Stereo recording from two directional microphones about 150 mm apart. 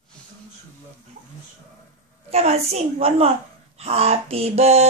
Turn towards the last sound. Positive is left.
turn(degrees=-45)  # may be behind; listen again after turning